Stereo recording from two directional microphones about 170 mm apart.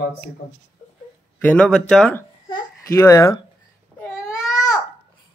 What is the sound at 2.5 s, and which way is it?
Babbling, 20° left (ahead or behind).